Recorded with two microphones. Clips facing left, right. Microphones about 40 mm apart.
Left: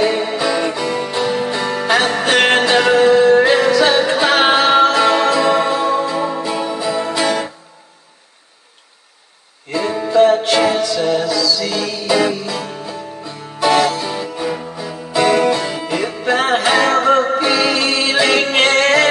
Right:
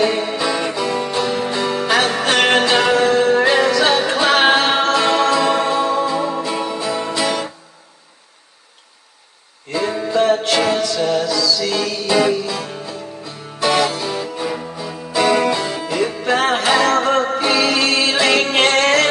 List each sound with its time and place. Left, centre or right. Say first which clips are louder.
0.0 s music: left 1 dB; centre
9.7 s music: left 1 dB; centre